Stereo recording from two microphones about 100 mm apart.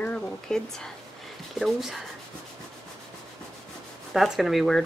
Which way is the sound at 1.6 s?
Centre (ahead or behind).